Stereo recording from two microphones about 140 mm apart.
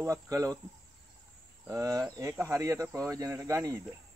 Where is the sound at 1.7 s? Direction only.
20° right (ahead or behind).